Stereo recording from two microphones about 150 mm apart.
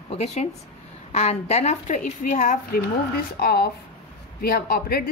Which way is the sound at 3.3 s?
90° left.